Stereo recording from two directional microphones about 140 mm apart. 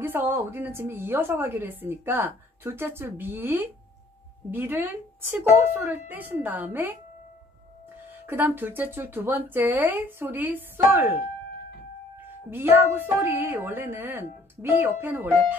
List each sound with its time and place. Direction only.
0.0 s a woman's voice: 15° right (ahead or behind)
8.1 s a woman's voice: 15° right (ahead or behind)
12.4 s a woman's voice: 15° right (ahead or behind)